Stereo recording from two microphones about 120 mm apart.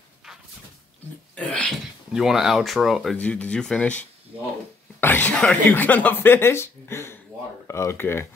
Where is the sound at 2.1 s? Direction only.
5° right (ahead or behind).